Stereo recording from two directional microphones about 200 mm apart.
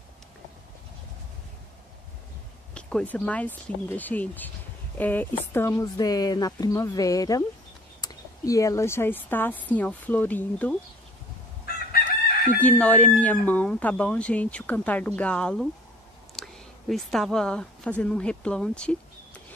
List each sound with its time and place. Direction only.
2.7 s speech: 5° left (ahead or behind)
11.6 s chicken: 50° left (ahead or behind)
12.5 s speech: 5° left (ahead or behind)